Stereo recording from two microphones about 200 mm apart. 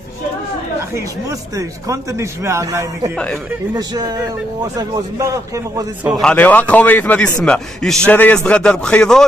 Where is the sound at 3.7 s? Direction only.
20° right (ahead or behind).